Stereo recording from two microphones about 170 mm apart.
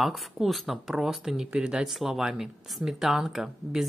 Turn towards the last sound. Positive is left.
turn(degrees=-5)  # may be behind; listen again after turning